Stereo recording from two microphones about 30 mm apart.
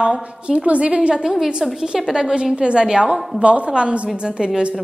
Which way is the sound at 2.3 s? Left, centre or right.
Right.